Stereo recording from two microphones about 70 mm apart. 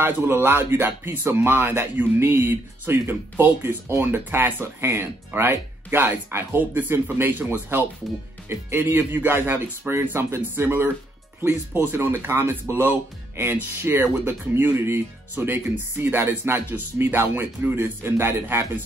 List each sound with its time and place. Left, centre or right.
0.0 s speech: right